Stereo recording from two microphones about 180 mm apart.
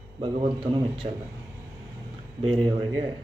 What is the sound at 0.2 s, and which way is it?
Speech, 25° right (ahead or behind).